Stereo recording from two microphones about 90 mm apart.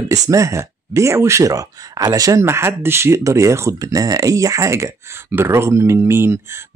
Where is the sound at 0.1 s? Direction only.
35° right (ahead or behind).